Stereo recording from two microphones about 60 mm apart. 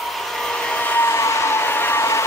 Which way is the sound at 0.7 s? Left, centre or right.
Left.